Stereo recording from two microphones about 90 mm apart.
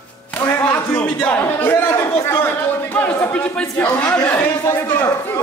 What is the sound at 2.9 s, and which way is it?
Speech, 20° left (ahead or behind).